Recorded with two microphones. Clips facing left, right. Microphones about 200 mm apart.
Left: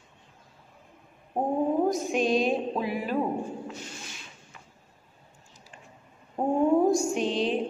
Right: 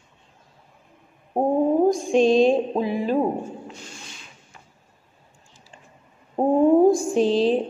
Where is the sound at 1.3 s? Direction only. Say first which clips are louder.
Right 7 dB; 45° right (ahead or behind).